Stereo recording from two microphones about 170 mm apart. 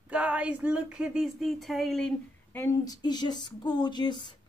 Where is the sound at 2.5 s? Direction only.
15° left (ahead or behind).